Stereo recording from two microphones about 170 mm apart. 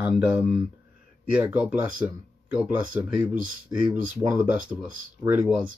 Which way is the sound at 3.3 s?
50° right (ahead or behind).